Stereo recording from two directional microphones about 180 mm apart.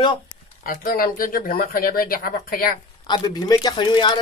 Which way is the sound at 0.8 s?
50° left (ahead or behind).